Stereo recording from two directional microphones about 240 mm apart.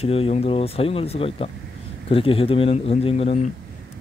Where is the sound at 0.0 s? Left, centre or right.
Left.